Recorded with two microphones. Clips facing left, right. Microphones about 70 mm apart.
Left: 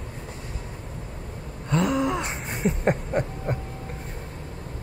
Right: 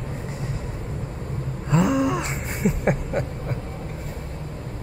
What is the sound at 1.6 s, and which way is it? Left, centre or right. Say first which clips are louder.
Gasp: right 3 dB; centre.